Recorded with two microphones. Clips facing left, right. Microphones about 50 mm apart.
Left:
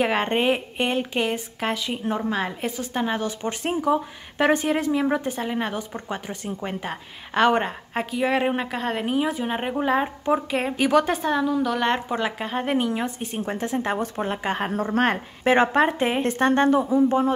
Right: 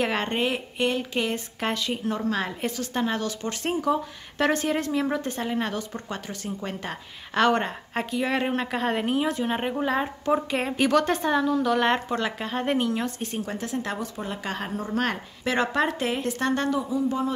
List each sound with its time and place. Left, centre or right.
0.0 s a woman's voice: centre
0.3 s a woman's voice: left
1.6 s a woman's voice: centre
2.0 s a woman's voice: left
2.3 s a woman's voice: centre
8.7 s a woman's voice: centre
12.1 s a woman's voice: centre
13.4 s a woman's voice: left
14.0 s a woman's voice: left
16.2 s a woman's voice: left